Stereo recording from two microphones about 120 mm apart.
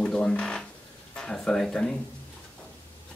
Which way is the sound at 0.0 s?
5° left (ahead or behind).